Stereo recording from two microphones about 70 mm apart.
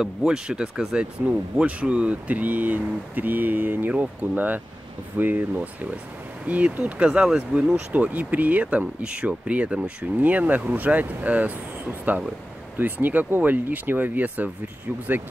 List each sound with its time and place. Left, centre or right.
0.0 s speech: centre